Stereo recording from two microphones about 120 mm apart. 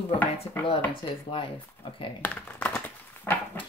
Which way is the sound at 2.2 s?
15° left (ahead or behind).